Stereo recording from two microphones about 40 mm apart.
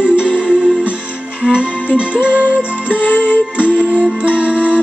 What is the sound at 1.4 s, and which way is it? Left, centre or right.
Music, right.